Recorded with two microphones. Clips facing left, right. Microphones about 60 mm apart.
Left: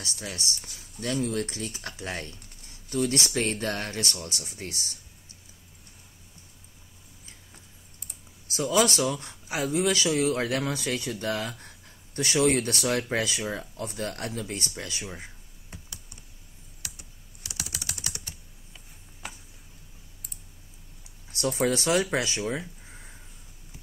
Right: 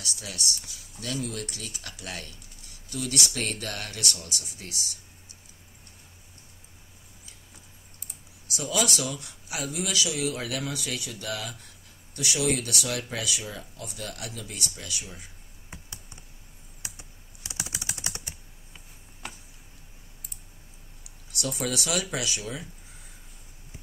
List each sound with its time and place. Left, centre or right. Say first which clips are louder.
0.0 s speech: left 1 dB; left
8.5 s speech: left 5 dB; left
16.8 s computer keyboard: right 1 dB; right
19.2 s a sound: even; centre
21.3 s speech: left 5 dB; left